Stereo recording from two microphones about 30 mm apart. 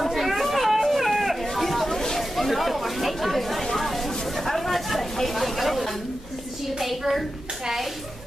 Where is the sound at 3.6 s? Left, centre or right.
Centre.